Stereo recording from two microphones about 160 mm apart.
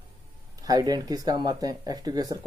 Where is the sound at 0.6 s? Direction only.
25° right (ahead or behind).